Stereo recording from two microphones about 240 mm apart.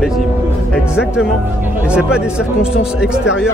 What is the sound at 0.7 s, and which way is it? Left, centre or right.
Speech, centre.